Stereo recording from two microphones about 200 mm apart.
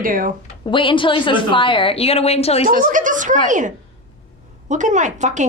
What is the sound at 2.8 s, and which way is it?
A woman's voice, 40° right (ahead or behind).